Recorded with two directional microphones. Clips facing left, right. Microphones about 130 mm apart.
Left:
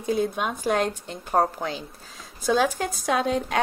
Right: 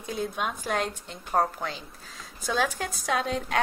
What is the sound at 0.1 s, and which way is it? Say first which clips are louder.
A woman's voice: left 6 dB; 30° left (ahead or behind).